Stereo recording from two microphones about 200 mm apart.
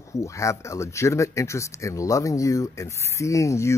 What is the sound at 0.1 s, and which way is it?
Speech, 15° left (ahead or behind).